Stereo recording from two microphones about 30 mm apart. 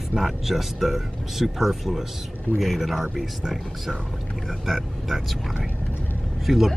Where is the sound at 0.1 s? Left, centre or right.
Centre.